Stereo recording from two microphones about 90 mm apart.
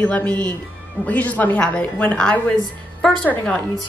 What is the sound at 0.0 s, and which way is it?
Speech, 15° left (ahead or behind).